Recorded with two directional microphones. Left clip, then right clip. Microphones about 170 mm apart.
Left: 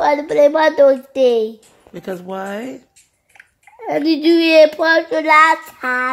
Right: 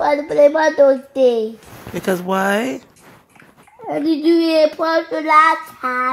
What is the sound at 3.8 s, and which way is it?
A child's voice, 30° left (ahead or behind).